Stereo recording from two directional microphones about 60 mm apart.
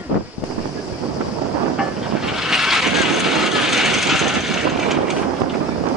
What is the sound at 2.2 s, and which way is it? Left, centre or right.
Vehicle, centre.